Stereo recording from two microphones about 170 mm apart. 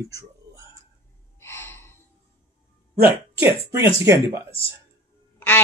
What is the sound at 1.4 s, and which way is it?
Gasp, 15° left (ahead or behind).